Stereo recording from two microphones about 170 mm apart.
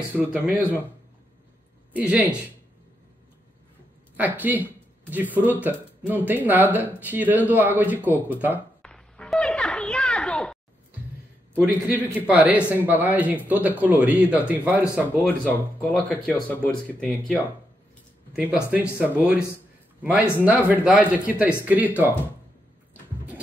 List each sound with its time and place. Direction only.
0.1 s speech: 10° right (ahead or behind)
2.0 s speech: 10° right (ahead or behind)
4.2 s speech: 10° right (ahead or behind)
8.8 s a sound: 5° left (ahead or behind)
11.5 s speech: 15° right (ahead or behind)
15.2 s speech: 10° left (ahead or behind)
18.3 s speech: 5° right (ahead or behind)